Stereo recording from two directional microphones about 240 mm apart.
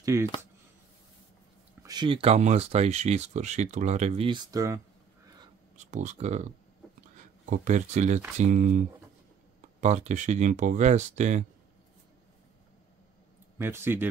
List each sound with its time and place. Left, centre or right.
0.0 s speech: centre
1.8 s speech: centre
5.8 s speech: right
13.6 s speech: centre